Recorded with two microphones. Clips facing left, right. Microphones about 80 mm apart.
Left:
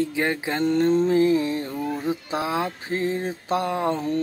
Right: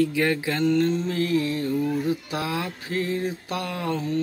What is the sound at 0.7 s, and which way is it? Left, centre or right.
Music, left.